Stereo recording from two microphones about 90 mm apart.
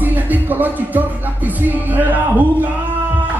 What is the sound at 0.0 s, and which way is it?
Music, 20° right (ahead or behind).